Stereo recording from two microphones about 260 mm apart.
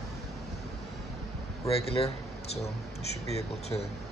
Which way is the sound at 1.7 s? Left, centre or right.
Left.